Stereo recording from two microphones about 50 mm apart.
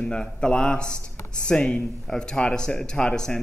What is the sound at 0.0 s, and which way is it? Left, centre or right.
Speech, centre.